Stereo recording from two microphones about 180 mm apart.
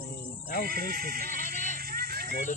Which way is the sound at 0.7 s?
55° right (ahead or behind).